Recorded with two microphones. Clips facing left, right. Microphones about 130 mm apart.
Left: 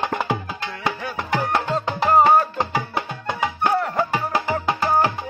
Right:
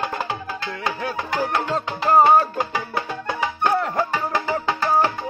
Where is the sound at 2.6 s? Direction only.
20° left (ahead or behind).